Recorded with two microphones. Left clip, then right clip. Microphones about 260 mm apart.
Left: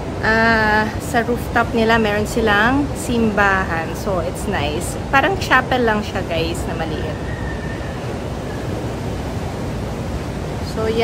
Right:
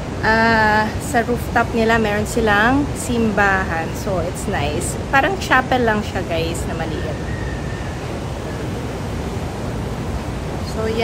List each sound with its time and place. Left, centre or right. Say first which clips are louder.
0.2 s a woman's voice: even; centre